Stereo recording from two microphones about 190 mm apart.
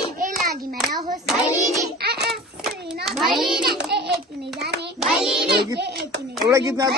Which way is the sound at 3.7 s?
60° right (ahead or behind).